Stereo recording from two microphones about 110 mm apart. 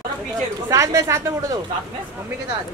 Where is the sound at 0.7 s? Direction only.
30° right (ahead or behind).